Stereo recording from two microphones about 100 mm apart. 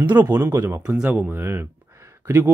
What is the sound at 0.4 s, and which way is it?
Speech, 20° right (ahead or behind).